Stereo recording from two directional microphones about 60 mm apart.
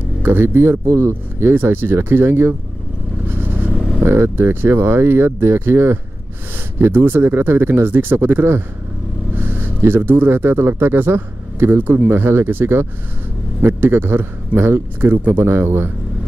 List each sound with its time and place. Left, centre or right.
0.2 s speech: right
3.3 s vehicle: right
4.0 s speech: right